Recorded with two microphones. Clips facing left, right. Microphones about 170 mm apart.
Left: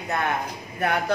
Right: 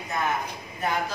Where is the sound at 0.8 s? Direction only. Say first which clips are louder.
Left 4 dB; 65° left (ahead or behind).